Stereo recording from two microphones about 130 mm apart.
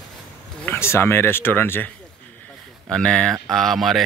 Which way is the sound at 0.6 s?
15° left (ahead or behind).